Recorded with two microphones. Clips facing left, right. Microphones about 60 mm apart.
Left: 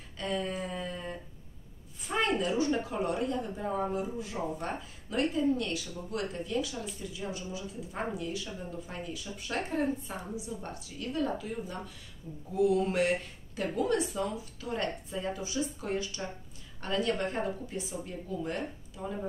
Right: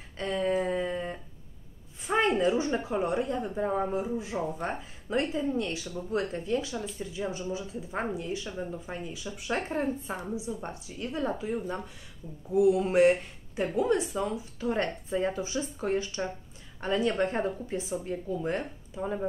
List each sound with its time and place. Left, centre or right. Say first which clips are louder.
0.2 s a sound: right 6 dB; right
2.0 s speech: right 5 dB; right
9.1 s speech: right 5 dB; centre
9.7 s speech: right 1 dB; right
12.5 s speech: right 4 dB; centre